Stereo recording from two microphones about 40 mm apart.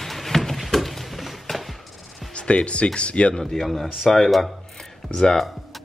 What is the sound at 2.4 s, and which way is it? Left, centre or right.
Speech, left.